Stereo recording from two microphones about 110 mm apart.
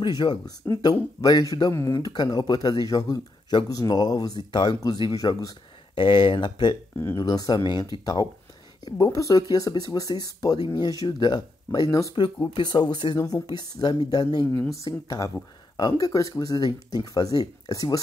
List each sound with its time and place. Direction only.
0.0 s speech: 45° left (ahead or behind)
12.2 s speech: 45° left (ahead or behind)